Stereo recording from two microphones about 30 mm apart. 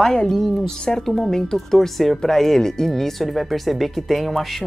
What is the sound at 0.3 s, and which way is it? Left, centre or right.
Speech, centre.